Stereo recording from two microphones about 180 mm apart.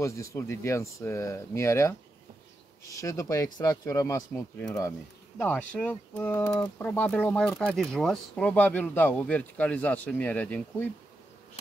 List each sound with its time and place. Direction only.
0.0 s speech: 15° left (ahead or behind)